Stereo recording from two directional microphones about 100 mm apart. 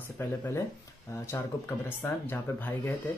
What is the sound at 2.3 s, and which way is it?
Speech, 20° left (ahead or behind).